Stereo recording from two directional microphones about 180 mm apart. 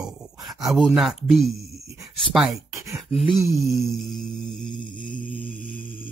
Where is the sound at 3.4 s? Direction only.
15° right (ahead or behind).